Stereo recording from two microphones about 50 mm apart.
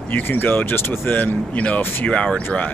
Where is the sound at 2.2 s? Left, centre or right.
Left.